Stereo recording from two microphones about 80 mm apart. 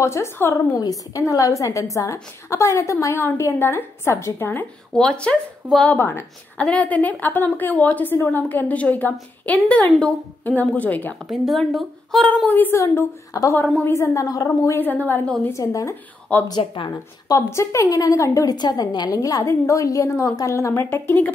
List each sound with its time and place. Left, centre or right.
0.0 s a woman's voice: left
0.7 s a woman's voice: left
4.9 s speech: centre
5.9 s a woman's voice: left
11.2 s a woman's voice: centre
12.4 s a woman's voice: left
12.7 s a woman's voice: left
13.8 s a woman's voice: left
14.2 s a woman's voice: left
14.8 s a woman's voice: left
15.5 s a woman's voice: left
16.4 s speech: left
17.5 s a woman's voice: left
18.6 s a woman's voice: left